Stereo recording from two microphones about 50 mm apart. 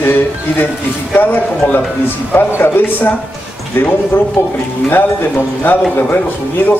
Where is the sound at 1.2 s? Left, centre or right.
Left.